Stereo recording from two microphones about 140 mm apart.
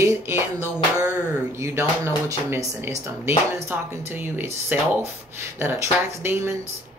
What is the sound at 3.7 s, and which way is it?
Speech, 15° right (ahead or behind).